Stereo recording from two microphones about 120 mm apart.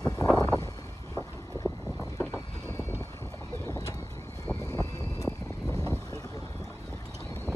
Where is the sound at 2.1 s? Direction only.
20° left (ahead or behind).